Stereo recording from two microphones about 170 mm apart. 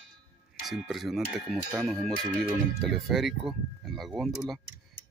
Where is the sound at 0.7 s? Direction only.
Centre (ahead or behind).